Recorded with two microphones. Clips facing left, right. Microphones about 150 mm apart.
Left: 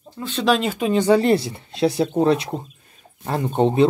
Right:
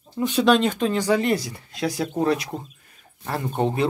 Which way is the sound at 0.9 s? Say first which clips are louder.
Left 9 dB; 30° left (ahead or behind).